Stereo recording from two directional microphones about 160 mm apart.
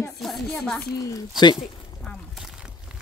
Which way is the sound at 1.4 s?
30° left (ahead or behind).